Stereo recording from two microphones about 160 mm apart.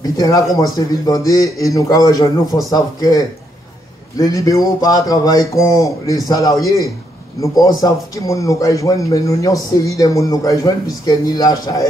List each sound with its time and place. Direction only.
0.0 s speech: 25° left (ahead or behind)